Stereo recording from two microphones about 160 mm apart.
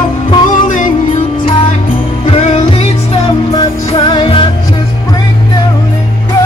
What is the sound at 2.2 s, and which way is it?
Music, 35° left (ahead or behind).